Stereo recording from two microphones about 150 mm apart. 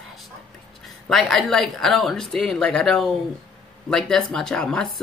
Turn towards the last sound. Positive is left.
turn(degrees=5)  # may be behind; listen again after turning